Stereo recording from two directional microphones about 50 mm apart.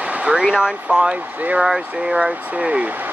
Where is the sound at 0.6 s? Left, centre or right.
Right.